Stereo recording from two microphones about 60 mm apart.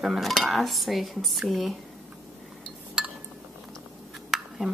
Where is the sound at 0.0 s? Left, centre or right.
Centre.